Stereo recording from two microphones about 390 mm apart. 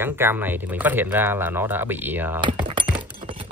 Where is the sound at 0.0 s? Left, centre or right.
Centre.